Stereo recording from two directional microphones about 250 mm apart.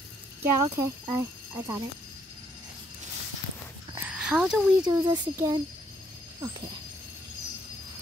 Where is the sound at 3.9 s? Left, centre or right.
Centre.